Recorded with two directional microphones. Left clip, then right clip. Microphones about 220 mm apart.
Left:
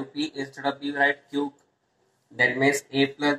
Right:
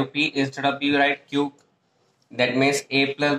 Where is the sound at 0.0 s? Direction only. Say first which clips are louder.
Right 8 dB; 40° right (ahead or behind).